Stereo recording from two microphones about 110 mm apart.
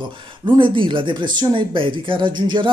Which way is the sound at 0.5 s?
50° right (ahead or behind).